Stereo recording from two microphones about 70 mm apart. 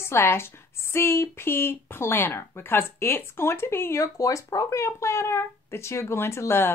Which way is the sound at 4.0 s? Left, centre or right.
Left.